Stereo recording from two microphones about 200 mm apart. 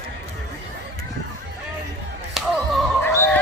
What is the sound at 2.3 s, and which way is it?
Music, centre (ahead or behind).